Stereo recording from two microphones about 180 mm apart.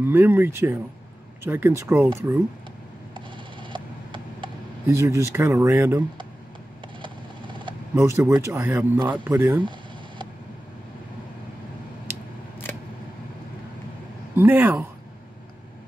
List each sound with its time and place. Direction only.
0.0 s speech: 10° right (ahead or behind)
3.7 s a sound: 25° right (ahead or behind)
4.9 s speech: 15° right (ahead or behind)
7.0 s vehicle: 25° right (ahead or behind)
7.9 s speech: 15° right (ahead or behind)
9.0 s speech: 25° right (ahead or behind)
9.6 s a sound: 25° right (ahead or behind)
12.7 s a sound: 10° left (ahead or behind)
14.3 s speech: 10° right (ahead or behind)